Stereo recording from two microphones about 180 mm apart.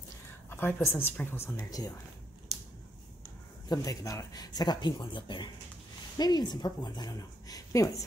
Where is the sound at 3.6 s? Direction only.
20° left (ahead or behind).